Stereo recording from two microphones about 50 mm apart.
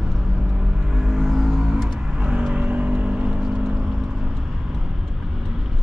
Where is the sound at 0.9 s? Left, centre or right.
Centre.